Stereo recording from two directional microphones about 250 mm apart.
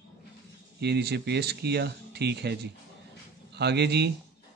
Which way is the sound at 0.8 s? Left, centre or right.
Right.